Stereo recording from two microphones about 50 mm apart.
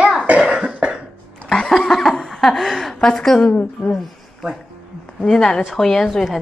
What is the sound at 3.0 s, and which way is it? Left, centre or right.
Speech, centre.